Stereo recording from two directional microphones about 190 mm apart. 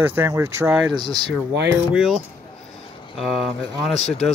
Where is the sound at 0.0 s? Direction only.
10° right (ahead or behind).